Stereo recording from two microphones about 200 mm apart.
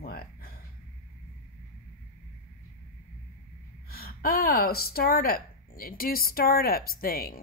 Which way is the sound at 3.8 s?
50° left (ahead or behind).